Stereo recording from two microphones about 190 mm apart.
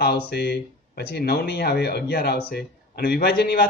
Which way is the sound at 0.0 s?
60° left (ahead or behind).